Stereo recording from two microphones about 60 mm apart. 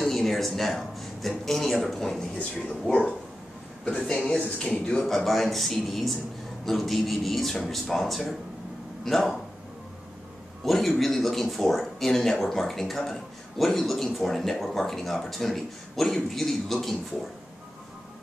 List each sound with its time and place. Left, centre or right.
0.0 s a sound: centre
1.4 s speech: centre
2.3 s speech: left
5.0 s speech: centre
10.6 s speech: centre